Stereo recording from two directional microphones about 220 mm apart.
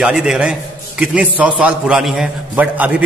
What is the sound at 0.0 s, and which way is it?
A man's voice, centre (ahead or behind).